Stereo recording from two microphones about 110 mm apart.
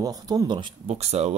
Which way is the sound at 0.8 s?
75° right (ahead or behind).